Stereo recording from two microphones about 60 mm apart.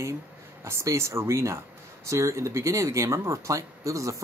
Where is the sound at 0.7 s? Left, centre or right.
Right.